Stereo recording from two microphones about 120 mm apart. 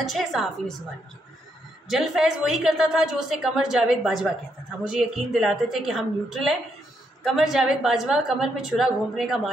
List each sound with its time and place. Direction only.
0.0 s a woman's voice: centre (ahead or behind)
1.9 s a woman's voice: 5° right (ahead or behind)